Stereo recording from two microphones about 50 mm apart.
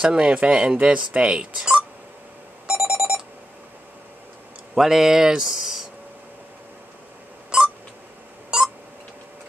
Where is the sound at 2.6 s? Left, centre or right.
Centre.